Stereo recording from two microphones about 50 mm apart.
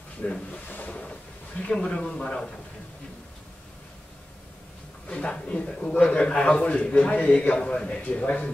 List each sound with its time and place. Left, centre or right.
0.2 s a man's voice: centre
0.7 s a man's voice: left; by 2.5 s centre
5.0 s a man's voice: left
7.2 s a man's voice: left
7.5 s a man's voice: centre